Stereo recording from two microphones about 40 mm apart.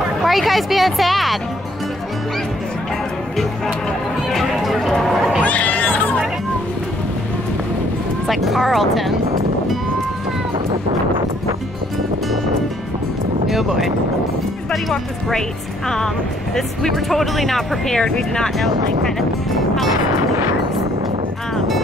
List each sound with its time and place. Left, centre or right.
0.2 s speech: centre
4.3 s a sound: centre
5.4 s a sound: left
8.3 s speech: centre
13.5 s speech: centre
16.5 s speech: centre
18.0 s speech: centre
18.6 s speech: centre